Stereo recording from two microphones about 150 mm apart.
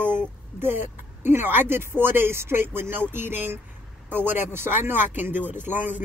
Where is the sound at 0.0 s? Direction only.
15° right (ahead or behind).